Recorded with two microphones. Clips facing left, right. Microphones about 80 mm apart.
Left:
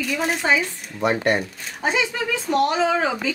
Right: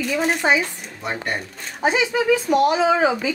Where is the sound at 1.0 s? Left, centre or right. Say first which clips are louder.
Left 6 dB; left.